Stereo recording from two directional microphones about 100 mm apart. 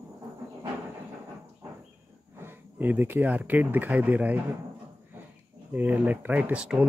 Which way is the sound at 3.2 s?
15° right (ahead or behind).